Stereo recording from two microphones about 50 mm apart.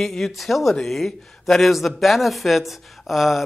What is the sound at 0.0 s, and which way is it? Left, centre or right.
Speech, centre.